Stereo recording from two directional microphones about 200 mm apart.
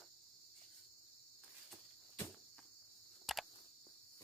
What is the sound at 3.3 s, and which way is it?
Cricket, centre (ahead or behind).